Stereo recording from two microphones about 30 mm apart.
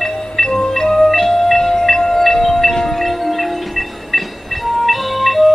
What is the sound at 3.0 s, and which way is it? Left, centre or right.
Music, centre.